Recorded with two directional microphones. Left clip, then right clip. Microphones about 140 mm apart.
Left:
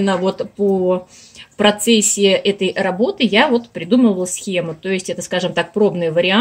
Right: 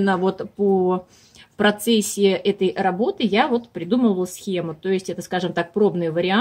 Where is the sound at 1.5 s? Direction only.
30° right (ahead or behind).